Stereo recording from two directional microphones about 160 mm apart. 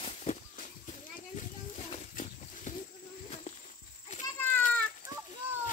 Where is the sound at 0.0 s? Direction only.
45° left (ahead or behind).